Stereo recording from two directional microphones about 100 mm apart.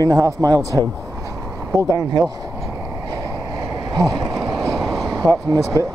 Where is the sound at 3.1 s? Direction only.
45° right (ahead or behind).